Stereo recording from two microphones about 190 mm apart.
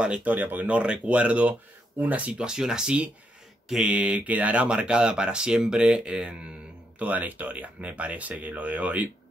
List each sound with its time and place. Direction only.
0.0 s speech: 5° right (ahead or behind)